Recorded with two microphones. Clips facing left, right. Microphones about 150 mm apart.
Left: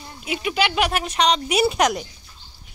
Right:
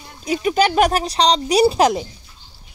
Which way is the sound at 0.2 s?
40° right (ahead or behind).